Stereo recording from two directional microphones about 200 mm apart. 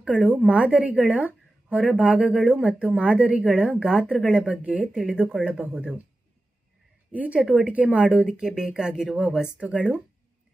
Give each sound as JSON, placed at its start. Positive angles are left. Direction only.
{"t": 0.0, "sound": "a woman's voice", "side_deg": -5}
{"t": 7.1, "sound": "a woman's voice", "side_deg": -5}